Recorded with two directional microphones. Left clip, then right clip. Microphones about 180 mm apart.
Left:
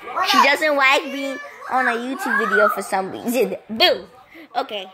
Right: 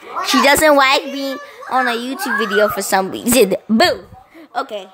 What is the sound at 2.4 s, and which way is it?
A child's voice, 25° right (ahead or behind).